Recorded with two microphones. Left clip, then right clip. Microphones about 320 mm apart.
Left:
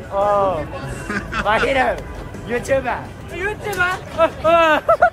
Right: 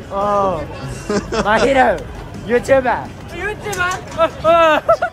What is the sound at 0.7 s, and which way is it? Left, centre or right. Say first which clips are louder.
Speech: right 4 dB; centre.